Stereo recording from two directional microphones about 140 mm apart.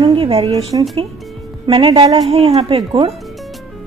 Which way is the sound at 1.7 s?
40° right (ahead or behind).